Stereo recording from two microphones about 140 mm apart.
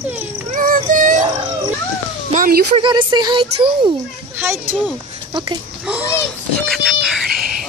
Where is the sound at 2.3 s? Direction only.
80° right.